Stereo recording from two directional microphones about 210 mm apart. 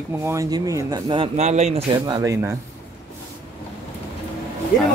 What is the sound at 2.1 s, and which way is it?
Speech, 15° right (ahead or behind).